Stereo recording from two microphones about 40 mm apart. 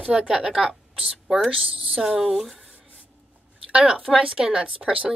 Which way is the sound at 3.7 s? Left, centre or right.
Right.